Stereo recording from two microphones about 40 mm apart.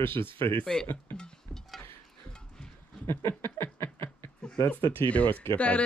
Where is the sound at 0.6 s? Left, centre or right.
Centre.